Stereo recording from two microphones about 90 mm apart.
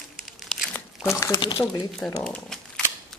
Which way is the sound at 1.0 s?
30° left (ahead or behind).